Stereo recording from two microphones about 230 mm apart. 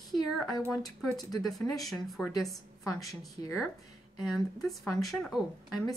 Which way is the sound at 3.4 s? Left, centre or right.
Right.